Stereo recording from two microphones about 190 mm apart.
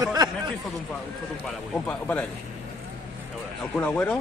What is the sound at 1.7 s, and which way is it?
Speech, 10° left (ahead or behind).